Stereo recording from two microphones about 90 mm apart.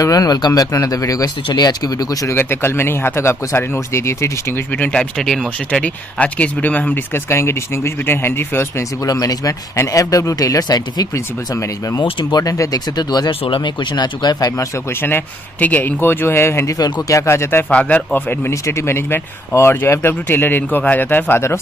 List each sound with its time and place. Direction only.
0.0 s speech: 45° left (ahead or behind)
2.3 s speech: 25° left (ahead or behind)
4.8 s speech: 10° left (ahead or behind)
7.3 s speech: 30° left (ahead or behind)
9.0 s speech: 45° left (ahead or behind)
12.0 s speech: 60° left (ahead or behind)
12.4 s speech: 45° left (ahead or behind)
15.0 s speech: 25° left (ahead or behind)
16.7 s speech: 40° left (ahead or behind)
17.3 s speech: 25° left (ahead or behind)
18.5 s speech: 30° left (ahead or behind)